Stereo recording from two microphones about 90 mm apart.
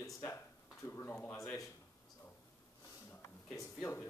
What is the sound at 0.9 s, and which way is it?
Speech, 25° left (ahead or behind).